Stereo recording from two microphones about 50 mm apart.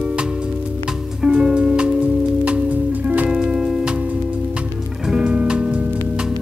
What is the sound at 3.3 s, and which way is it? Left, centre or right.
Music, centre.